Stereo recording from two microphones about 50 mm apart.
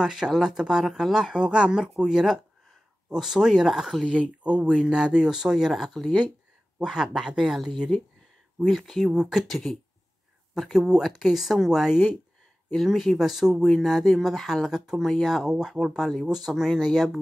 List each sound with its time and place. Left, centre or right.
0.0 s speech: centre
1.3 s speech: centre
4.4 s speech: right
4.9 s speech: centre
8.6 s speech: centre
9.0 s speech: centre
9.4 s speech: centre